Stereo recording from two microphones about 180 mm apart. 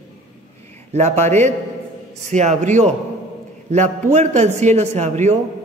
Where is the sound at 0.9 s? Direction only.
40° right (ahead or behind).